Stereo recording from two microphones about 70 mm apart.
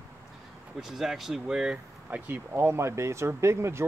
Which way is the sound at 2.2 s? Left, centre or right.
Right.